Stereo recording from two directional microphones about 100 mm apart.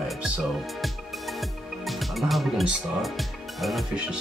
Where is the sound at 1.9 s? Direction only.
Centre (ahead or behind).